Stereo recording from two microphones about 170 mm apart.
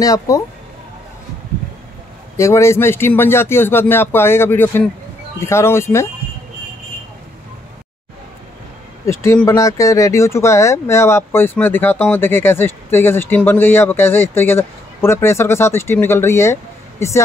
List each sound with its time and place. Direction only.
0.0 s speech: 20° left (ahead or behind)
2.3 s speech: 15° left (ahead or behind)
9.0 s speech: 15° left (ahead or behind)